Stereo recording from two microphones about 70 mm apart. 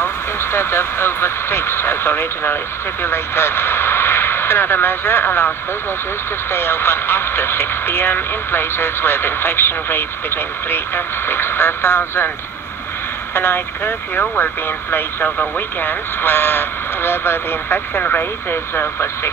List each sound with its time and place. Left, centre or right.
0.0 s speech: left
6.5 s speech: left
13.3 s speech: left